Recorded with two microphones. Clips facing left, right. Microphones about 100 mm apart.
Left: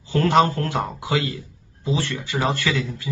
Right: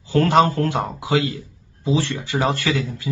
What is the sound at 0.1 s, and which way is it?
Speech, 30° right (ahead or behind).